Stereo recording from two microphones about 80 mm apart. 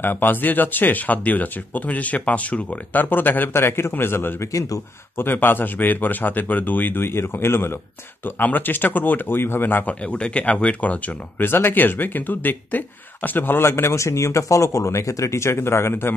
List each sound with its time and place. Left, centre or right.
0.0 s speech: left
4.5 s speech: left
5.1 s speech: left
10.0 s speech: centre; by 16.1 s left